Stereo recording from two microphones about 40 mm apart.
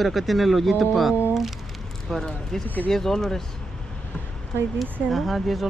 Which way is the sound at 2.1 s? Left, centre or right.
Centre.